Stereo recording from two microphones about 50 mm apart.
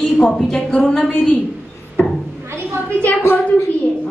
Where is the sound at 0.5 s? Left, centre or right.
Left.